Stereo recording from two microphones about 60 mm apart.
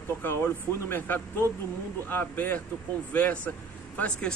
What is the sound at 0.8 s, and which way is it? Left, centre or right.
Speech, left.